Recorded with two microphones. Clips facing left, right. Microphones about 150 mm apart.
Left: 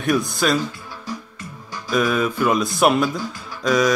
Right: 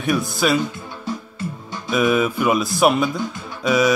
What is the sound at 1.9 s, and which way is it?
Speech, 5° right (ahead or behind).